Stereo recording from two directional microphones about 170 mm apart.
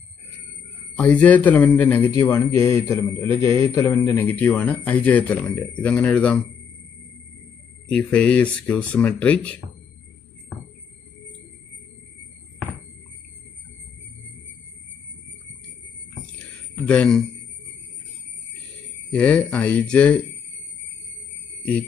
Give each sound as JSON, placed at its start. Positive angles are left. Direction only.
{"t": 0.9, "sound": "a man's voice", "side_deg": 5}
{"t": 2.0, "sound": "a man's voice", "side_deg": 20}
{"t": 7.9, "sound": "a man's voice", "side_deg": 5}
{"t": 16.8, "sound": "a man's voice", "side_deg": 5}
{"t": 19.0, "sound": "a man's voice", "side_deg": 5}